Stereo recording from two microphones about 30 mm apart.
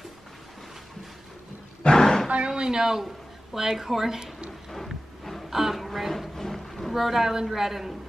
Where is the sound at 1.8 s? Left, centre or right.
Centre.